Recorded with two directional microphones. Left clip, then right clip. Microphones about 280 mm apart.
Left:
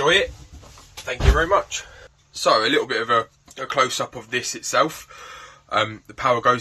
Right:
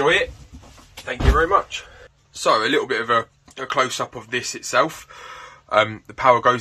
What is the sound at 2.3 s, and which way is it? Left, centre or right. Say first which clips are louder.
Speech: even; centre.